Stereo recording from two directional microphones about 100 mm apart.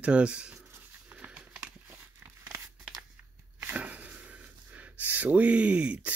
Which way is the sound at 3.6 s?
15° right (ahead or behind).